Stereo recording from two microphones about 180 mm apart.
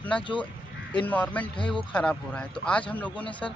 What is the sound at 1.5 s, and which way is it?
Speech, 25° left (ahead or behind).